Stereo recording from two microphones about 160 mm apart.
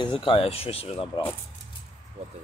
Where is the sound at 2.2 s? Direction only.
40° right (ahead or behind).